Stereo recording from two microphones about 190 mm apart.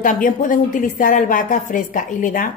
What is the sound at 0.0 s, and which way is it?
A woman's voice, 45° left (ahead or behind).